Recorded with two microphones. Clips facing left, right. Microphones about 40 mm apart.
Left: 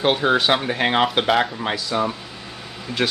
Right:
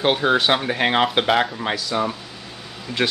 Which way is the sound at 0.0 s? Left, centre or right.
Centre.